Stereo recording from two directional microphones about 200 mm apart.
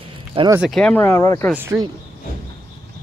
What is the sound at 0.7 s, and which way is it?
Speech, 5° left (ahead or behind).